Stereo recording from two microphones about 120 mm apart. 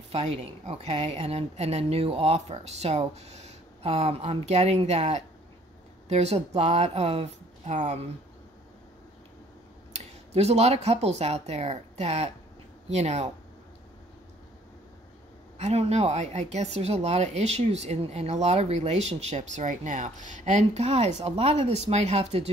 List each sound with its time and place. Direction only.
0.1 s speech: 65° right (ahead or behind)
9.9 s speech: 60° right (ahead or behind)
15.5 s speech: 60° right (ahead or behind)